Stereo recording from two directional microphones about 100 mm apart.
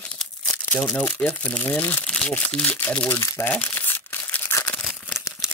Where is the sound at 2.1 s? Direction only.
10° left (ahead or behind).